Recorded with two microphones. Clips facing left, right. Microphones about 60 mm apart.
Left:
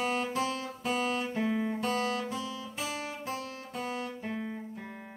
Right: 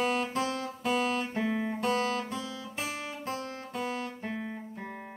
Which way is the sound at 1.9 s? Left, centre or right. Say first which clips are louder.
Right 1 dB; right.